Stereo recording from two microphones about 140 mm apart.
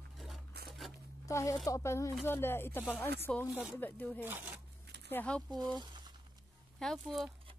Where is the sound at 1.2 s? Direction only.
20° left (ahead or behind).